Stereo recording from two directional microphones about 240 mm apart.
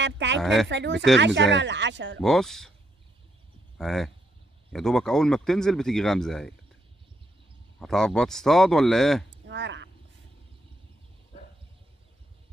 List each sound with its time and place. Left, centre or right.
0.0 s speech: right
0.4 s speech: centre
0.7 s speech: right
2.1 s speech: centre
3.7 s speech: centre
7.8 s speech: centre
9.5 s speech: right